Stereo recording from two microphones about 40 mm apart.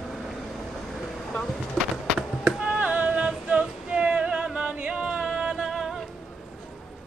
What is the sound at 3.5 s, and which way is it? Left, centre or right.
Female singing, right.